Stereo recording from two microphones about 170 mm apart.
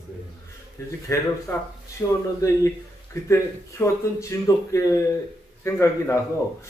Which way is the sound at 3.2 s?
15° left (ahead or behind).